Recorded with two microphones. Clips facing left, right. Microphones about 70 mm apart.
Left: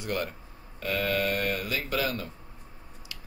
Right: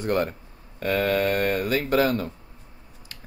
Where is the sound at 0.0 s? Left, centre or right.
Right.